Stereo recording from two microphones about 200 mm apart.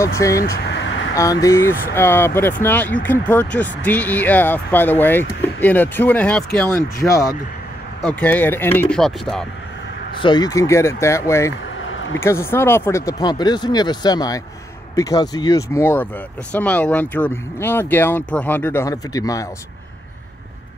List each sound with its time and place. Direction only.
0.0 s speech: 15° left (ahead or behind)
0.4 s speech: 60° left (ahead or behind)
1.1 s speech: 15° left (ahead or behind)
8.0 s speech: 5° left (ahead or behind)
10.2 s speech: 20° left (ahead or behind)
11.8 s a sound: 70° left (ahead or behind)
12.2 s speech: 10° left (ahead or behind)